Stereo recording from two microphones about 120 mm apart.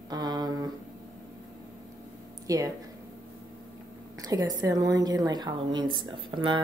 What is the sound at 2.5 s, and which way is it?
Speech, 30° right (ahead or behind).